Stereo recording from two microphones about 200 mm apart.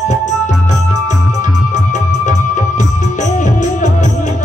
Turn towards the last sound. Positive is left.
turn(degrees=40)  # may be behind; listen again after turning